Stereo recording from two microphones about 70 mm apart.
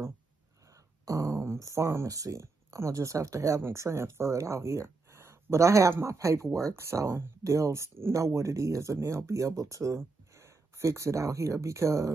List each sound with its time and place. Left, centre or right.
1.0 s speech: right